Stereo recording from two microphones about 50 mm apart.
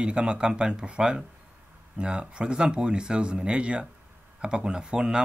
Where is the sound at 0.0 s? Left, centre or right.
Centre.